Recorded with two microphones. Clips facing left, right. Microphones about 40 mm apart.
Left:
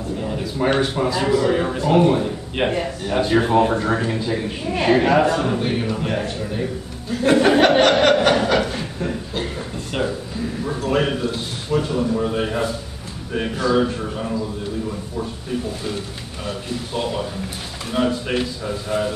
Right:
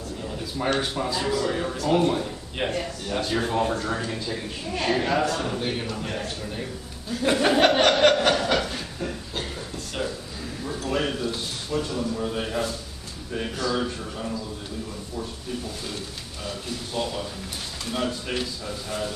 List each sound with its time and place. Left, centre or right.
0.2 s a man's voice: left
8.0 s chuckle: centre
9.9 s a man's voice: centre
16.4 s a man's voice: centre